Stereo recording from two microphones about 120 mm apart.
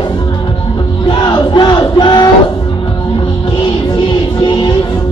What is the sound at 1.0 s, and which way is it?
Crowd, 40° left (ahead or behind).